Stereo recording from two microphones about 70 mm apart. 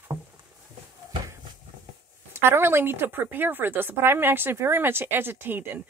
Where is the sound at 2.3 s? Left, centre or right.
Right.